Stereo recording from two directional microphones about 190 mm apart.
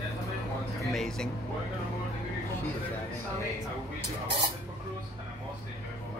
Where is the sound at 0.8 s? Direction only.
Centre (ahead or behind).